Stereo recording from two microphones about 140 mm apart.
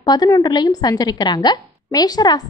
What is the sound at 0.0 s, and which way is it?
A woman's voice, 30° left (ahead or behind).